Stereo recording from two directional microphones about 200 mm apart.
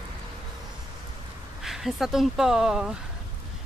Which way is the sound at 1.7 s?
Centre (ahead or behind).